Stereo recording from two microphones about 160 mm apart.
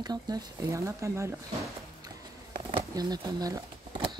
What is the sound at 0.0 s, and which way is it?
Speech, 25° right (ahead or behind).